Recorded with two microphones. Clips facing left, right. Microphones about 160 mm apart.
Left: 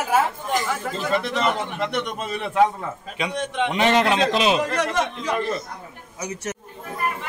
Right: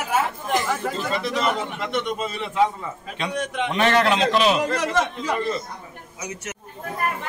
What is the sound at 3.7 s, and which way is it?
Speech, 20° left (ahead or behind).